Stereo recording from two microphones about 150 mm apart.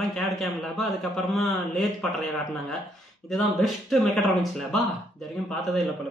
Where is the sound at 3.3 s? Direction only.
Centre (ahead or behind).